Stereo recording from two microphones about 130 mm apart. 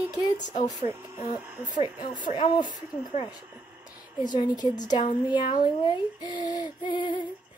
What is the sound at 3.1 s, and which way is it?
Speech, 55° left (ahead or behind).